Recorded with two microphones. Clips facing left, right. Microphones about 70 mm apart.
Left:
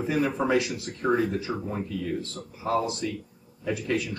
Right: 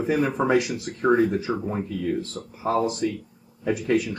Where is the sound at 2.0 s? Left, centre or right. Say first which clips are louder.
Right 5 dB; right.